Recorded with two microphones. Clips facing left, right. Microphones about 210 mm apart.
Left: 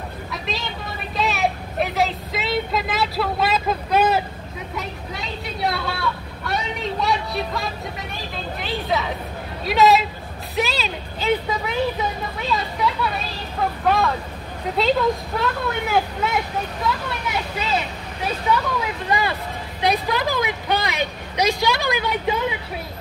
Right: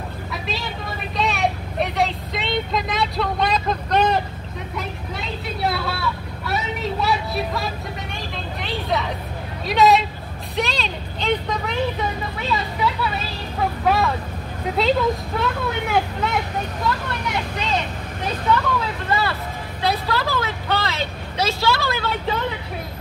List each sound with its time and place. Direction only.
0.3 s vehicle: centre (ahead or behind)
4.7 s speech: centre (ahead or behind)